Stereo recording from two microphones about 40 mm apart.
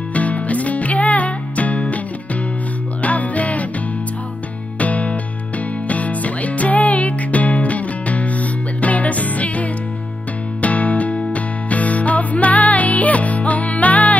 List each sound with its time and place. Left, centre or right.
0.1 s music: left
3.0 s music: left
4.7 s music: left